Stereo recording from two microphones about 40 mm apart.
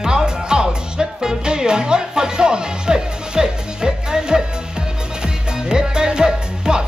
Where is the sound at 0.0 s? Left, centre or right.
Centre.